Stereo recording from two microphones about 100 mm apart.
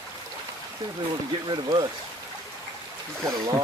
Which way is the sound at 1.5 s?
45° right (ahead or behind).